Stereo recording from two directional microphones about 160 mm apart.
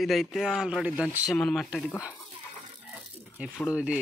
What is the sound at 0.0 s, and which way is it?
Speech, centre (ahead or behind).